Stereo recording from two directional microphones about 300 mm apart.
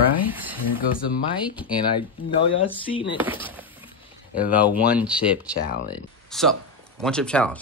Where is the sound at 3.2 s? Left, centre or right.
Centre.